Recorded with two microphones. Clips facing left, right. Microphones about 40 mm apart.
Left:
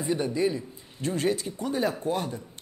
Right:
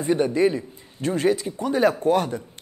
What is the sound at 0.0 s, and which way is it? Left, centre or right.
A man's voice, right.